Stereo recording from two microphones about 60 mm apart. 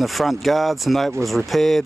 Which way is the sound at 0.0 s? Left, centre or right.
Centre.